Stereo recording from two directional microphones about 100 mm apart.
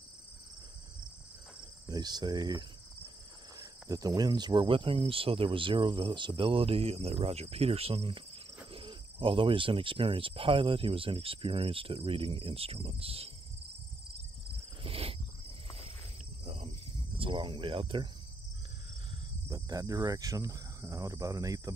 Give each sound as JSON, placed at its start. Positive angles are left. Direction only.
{"t": 1.9, "sound": "cricket", "side_deg": -45}
{"t": 3.9, "sound": "speech", "side_deg": -40}
{"t": 8.7, "sound": "speech", "side_deg": -60}
{"t": 14.8, "sound": "cricket", "side_deg": -75}
{"t": 16.4, "sound": "cricket", "side_deg": -65}
{"t": 19.5, "sound": "cricket", "side_deg": -35}